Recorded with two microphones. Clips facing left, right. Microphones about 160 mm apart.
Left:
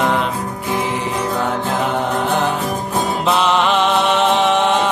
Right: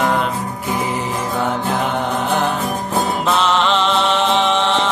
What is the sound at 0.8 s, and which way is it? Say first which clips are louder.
Mantra: left 1 dB; centre (ahead or behind).